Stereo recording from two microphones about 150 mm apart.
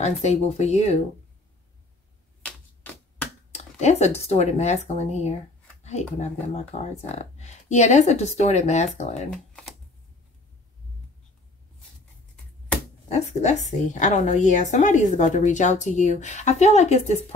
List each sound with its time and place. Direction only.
0.0 s a woman's voice: 45° left (ahead or behind)
2.4 s typewriter: 10° left (ahead or behind)
3.5 s a woman's voice: 45° left (ahead or behind)
13.1 s a woman's voice: 50° left (ahead or behind)